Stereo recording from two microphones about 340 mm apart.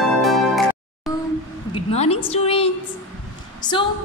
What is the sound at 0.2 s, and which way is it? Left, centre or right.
Music, centre.